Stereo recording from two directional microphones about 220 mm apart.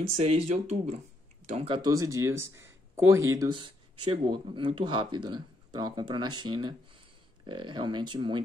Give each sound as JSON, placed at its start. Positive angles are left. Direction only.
{"t": 0.1, "sound": "speech", "side_deg": -30}